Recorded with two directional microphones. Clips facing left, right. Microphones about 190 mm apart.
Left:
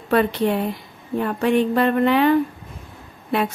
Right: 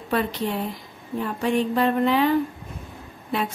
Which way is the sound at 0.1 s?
65° left (ahead or behind).